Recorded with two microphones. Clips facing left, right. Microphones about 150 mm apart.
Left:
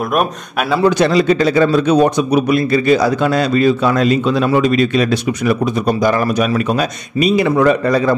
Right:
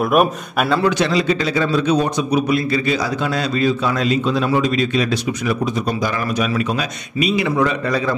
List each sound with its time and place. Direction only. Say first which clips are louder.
0.1 s speech: right 1 dB; 5° right (ahead or behind)
0.8 s a man's voice: left 5 dB; 50° left (ahead or behind)